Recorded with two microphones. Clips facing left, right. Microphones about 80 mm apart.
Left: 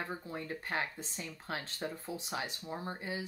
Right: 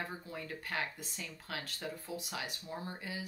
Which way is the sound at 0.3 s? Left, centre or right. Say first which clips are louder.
Left 3 dB; left.